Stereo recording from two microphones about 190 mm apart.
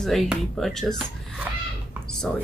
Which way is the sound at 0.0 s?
Centre (ahead or behind).